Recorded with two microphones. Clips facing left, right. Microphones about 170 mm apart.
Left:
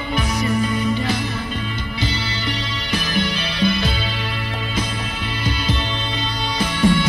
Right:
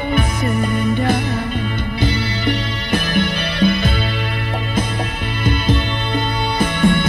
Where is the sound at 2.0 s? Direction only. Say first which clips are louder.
Right 5 dB; 55° right (ahead or behind).